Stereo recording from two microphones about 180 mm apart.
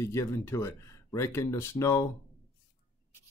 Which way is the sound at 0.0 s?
15° left (ahead or behind).